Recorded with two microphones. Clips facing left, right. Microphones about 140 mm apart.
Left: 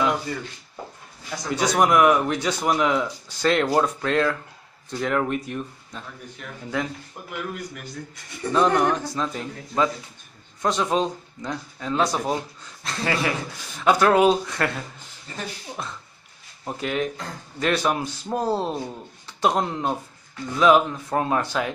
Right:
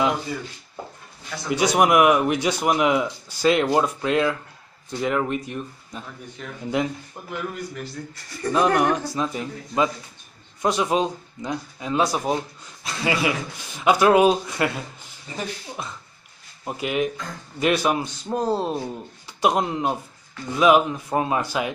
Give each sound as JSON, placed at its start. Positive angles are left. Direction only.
{"t": 1.5, "sound": "speech", "side_deg": -10}
{"t": 6.7, "sound": "speech", "side_deg": -20}
{"t": 7.2, "sound": "speech", "side_deg": 5}
{"t": 18.0, "sound": "speech", "side_deg": 5}